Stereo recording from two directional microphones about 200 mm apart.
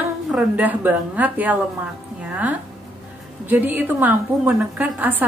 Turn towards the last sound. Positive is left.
turn(degrees=-10)  # may be behind; listen again after turning